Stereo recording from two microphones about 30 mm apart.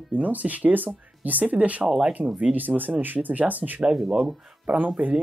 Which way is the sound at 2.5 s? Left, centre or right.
Right.